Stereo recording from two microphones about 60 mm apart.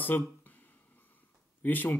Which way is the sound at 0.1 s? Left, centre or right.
Left.